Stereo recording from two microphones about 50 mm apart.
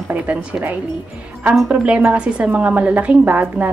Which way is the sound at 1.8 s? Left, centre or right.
Right.